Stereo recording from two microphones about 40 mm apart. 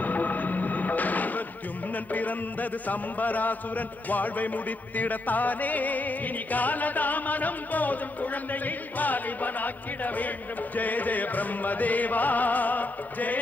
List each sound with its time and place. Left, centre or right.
0.0 s music: left
2.1 s a man's voice: left